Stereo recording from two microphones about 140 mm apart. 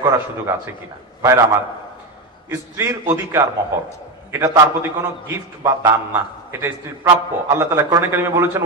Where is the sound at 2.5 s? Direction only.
15° right (ahead or behind).